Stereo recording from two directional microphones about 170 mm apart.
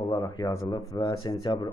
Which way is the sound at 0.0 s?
25° left (ahead or behind).